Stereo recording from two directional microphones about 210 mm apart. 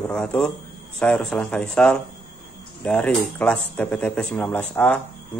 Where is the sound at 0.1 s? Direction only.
5° left (ahead or behind).